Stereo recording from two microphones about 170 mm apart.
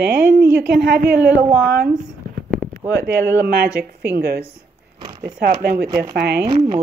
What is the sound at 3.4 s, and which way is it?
Speech, 70° right (ahead or behind).